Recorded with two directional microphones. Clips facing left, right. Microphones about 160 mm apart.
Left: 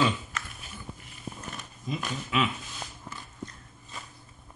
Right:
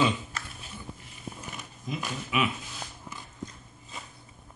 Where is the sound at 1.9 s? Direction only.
10° right (ahead or behind).